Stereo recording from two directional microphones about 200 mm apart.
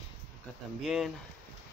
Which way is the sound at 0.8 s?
Centre (ahead or behind).